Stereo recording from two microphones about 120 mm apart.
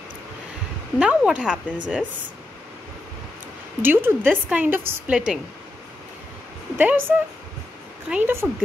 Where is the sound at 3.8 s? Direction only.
15° right (ahead or behind).